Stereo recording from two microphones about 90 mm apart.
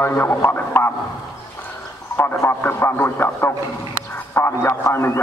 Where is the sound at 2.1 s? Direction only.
25° left (ahead or behind).